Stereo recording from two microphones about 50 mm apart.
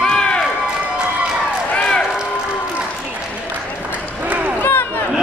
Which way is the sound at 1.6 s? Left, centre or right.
Left.